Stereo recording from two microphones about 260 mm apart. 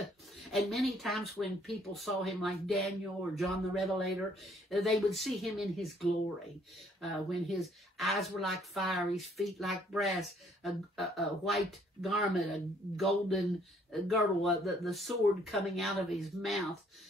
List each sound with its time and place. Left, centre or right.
0.0 s speech: centre